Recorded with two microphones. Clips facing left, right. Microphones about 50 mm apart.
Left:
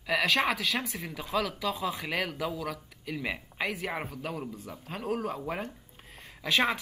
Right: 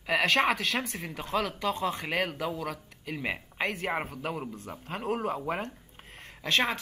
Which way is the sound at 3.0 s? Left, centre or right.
Right.